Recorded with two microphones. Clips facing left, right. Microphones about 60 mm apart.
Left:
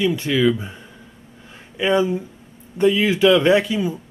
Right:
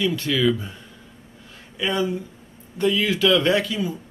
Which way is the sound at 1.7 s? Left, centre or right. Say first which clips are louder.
Left 5 dB; left.